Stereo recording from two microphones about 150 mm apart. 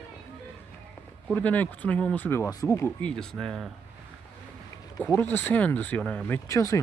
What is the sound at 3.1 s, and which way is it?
Speech, 5° left (ahead or behind).